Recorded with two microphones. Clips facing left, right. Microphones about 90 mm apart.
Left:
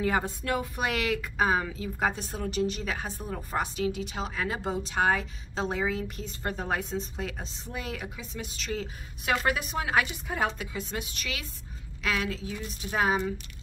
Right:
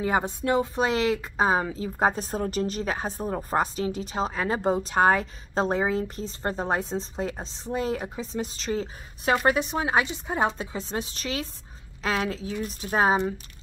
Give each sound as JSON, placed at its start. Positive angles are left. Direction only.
{"t": 0.0, "sound": "a woman's voice", "side_deg": -20}